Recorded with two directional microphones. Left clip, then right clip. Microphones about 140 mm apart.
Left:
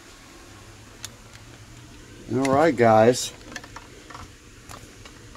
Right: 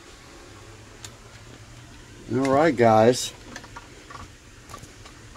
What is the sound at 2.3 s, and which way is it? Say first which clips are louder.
Speech: even; 20° right (ahead or behind).